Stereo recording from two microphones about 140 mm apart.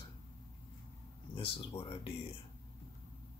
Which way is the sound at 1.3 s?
40° left (ahead or behind).